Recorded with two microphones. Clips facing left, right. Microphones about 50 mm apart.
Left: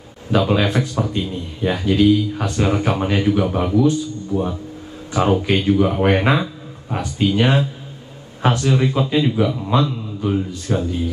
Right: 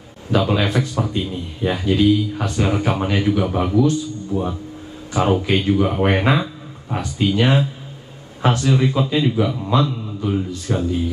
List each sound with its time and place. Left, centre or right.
0.4 s speech: centre
6.2 s a sound: centre
7.2 s speech: centre